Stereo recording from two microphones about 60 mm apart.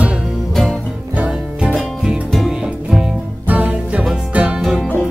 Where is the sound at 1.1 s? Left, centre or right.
Centre.